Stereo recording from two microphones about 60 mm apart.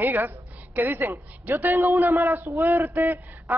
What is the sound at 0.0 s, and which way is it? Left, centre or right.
A woman's voice, right.